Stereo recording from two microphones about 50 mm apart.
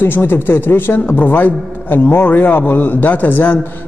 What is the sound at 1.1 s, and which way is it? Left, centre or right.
A man's voice, left.